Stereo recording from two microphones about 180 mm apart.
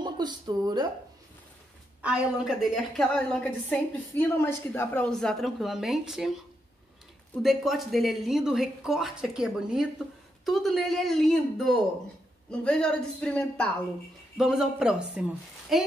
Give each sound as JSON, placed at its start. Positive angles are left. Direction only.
{"t": 0.0, "sound": "speech", "side_deg": -25}
{"t": 2.0, "sound": "a woman's voice", "side_deg": -5}
{"t": 7.4, "sound": "a woman's voice", "side_deg": 0}